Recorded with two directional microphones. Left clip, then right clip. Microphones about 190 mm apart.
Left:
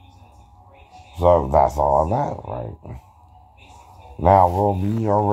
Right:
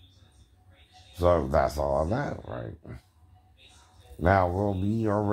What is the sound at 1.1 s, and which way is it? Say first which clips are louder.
Speech: left 8 dB; 20° right (ahead or behind).